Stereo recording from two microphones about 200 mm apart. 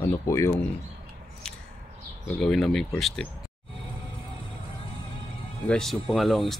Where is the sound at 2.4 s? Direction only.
Centre (ahead or behind).